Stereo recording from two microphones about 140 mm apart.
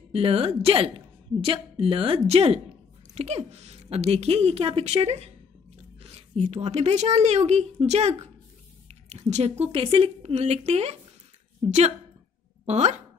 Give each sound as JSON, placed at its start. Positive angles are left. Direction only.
{"t": 0.1, "sound": "a woman's voice", "side_deg": -40}
{"t": 12.6, "sound": "speech", "side_deg": -55}